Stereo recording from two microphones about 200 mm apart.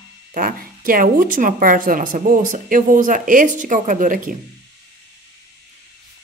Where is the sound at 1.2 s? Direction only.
45° right (ahead or behind).